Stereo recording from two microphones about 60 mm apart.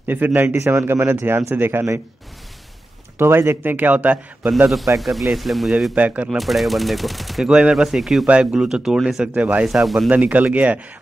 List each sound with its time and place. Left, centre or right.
0.1 s speech: right
3.2 s speech: right
4.9 s speech: centre
5.9 s speech: right
6.3 s speech: centre
7.4 s speech: centre
9.4 s speech: right
9.7 s speech: centre
10.0 s speech: right